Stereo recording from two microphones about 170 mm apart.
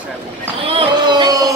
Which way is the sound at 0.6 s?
30° right (ahead or behind).